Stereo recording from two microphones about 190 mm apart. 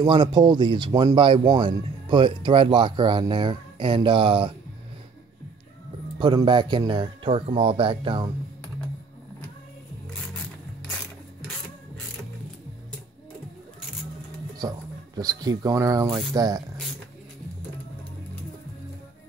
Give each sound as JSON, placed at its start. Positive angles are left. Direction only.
{"t": 0.0, "sound": "speech", "side_deg": -25}
{"t": 6.1, "sound": "speech", "side_deg": -25}
{"t": 14.6, "sound": "speech", "side_deg": -20}